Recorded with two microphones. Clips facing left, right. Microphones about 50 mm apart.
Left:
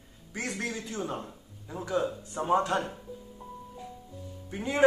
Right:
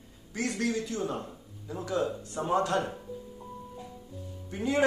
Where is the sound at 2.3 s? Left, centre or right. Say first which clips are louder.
Left 3 dB; centre.